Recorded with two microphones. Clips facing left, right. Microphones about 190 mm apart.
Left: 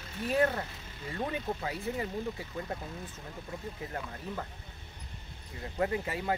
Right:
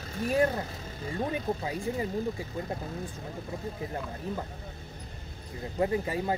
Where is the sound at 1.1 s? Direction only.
15° right (ahead or behind).